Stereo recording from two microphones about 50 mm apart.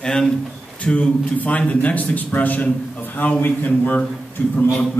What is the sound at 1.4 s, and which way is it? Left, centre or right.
A man's voice, left.